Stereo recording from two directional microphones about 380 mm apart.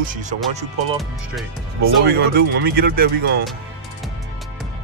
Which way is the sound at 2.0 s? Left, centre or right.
Right.